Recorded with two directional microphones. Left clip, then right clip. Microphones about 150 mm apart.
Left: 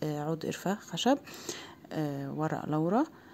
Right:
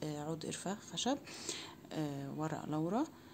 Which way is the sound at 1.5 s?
35° left (ahead or behind).